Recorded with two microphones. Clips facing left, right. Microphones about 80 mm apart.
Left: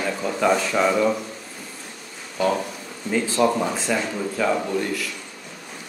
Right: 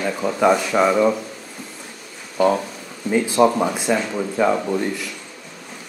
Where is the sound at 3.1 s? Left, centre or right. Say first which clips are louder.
Right 4 dB; centre.